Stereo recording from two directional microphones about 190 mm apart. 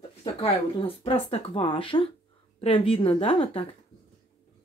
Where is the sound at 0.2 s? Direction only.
30° left (ahead or behind).